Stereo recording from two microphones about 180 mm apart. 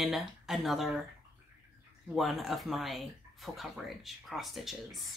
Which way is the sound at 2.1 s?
Centre (ahead or behind).